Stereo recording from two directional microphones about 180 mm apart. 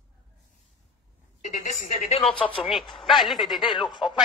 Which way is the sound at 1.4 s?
45° left (ahead or behind).